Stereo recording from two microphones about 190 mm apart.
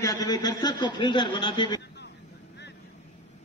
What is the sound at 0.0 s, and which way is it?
A man's voice, 20° left (ahead or behind).